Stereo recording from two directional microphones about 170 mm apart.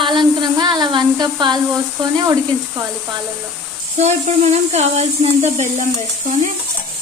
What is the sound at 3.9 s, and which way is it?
Speech, 40° right (ahead or behind).